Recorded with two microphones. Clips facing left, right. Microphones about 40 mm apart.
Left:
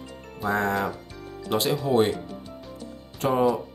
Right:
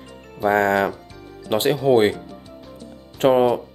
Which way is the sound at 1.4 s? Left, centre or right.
Right.